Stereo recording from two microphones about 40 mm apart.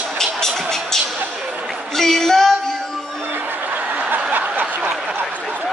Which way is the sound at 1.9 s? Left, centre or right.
Centre.